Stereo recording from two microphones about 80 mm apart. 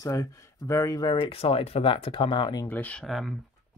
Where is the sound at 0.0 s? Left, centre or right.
Left.